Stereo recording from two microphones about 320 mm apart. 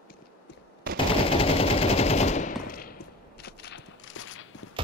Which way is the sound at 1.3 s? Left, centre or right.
Centre.